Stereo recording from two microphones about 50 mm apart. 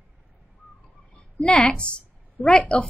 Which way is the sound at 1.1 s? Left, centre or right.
Left.